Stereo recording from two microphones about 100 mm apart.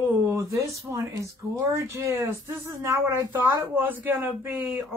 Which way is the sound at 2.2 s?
25° right (ahead or behind).